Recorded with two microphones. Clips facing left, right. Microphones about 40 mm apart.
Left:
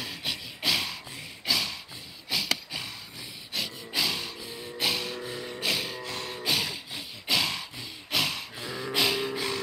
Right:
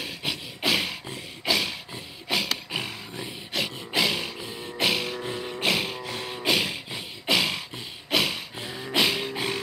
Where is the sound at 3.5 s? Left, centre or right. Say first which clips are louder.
Right 5 dB; right.